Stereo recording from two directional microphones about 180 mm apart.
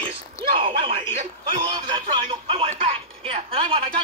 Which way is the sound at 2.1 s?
30° right (ahead or behind).